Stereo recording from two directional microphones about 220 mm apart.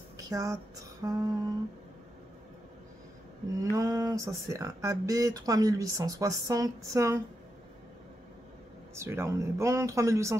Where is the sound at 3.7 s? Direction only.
15° right (ahead or behind).